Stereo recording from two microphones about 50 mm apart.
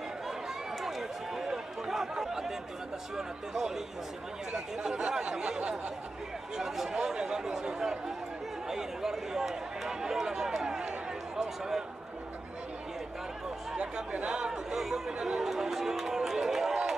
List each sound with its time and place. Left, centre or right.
0.8 s chatter: centre
3.2 s speech: centre
8.6 s run: centre
13.7 s speech: centre
14.7 s chatter: centre